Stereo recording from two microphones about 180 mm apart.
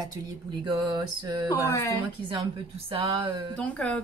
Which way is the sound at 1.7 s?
15° left (ahead or behind).